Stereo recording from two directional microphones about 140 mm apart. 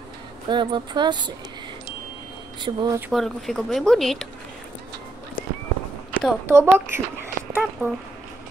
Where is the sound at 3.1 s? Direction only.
Centre (ahead or behind).